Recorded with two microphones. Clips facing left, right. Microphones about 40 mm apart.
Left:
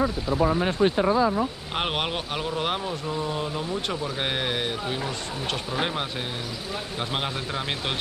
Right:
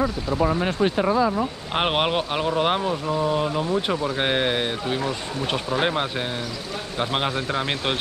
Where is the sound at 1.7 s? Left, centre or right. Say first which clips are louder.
Right 5 dB; centre.